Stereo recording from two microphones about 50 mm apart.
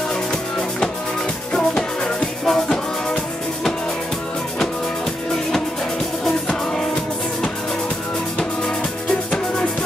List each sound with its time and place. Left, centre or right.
0.3 s music: centre
2.4 s music: centre